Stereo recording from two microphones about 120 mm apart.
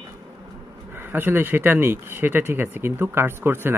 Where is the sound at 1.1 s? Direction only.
15° right (ahead or behind).